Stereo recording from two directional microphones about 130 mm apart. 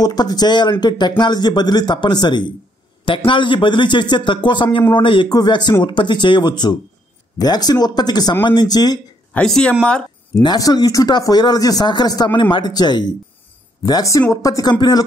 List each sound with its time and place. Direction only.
0.0 s speech: 30° left (ahead or behind)
9.3 s speech: 5° left (ahead or behind)
10.4 s speech: 30° left (ahead or behind)